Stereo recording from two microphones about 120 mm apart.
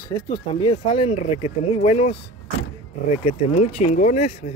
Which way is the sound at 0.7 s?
60° left (ahead or behind).